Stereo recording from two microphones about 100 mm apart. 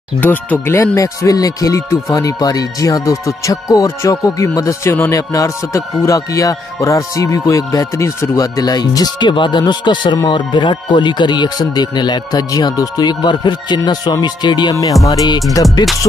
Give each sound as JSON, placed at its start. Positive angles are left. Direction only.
{"t": 0.2, "sound": "speech", "side_deg": 15}
{"t": 0.9, "sound": "speech", "side_deg": 35}